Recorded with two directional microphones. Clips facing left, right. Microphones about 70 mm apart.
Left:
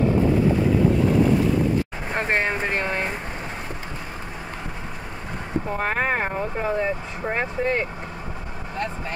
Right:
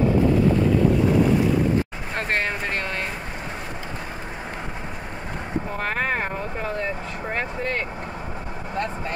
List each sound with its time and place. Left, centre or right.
2.1 s speech: centre
5.8 s speech: centre